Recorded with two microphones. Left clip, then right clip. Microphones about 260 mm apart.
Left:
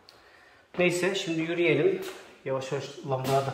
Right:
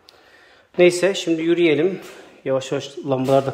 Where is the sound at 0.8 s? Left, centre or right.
Right.